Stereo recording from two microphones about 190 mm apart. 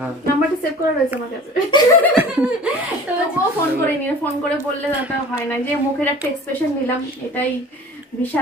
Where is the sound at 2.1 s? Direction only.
5° right (ahead or behind).